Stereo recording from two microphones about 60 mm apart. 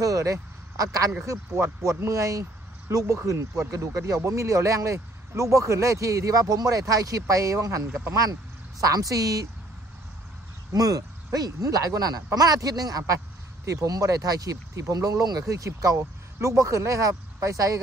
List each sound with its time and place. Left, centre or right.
0.0 s a sound: right
1.2 s speech: right
8.1 s speech: right
10.7 s speech: right